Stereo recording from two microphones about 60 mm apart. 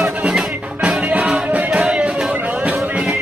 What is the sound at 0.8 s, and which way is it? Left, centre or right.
Music, right.